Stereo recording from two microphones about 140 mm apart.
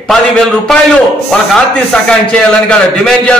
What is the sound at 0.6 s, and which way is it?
A man's voice, 5° left (ahead or behind).